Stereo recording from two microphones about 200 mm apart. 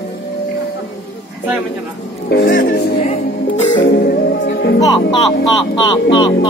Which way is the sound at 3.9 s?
45° left (ahead or behind).